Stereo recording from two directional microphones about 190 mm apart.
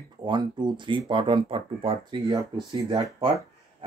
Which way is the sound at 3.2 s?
30° right (ahead or behind).